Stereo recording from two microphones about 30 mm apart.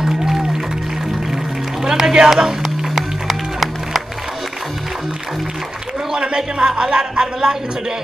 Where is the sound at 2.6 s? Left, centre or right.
Centre.